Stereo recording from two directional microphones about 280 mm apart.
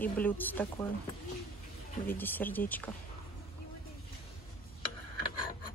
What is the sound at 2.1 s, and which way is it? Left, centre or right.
Speech, centre.